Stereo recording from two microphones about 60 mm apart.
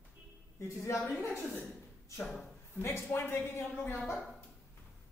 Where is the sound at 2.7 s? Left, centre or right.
Left.